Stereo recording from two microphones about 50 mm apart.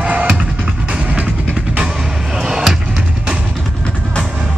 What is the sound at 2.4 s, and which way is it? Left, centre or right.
Music, centre.